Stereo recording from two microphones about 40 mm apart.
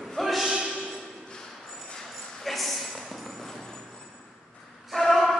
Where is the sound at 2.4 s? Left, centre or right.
Centre.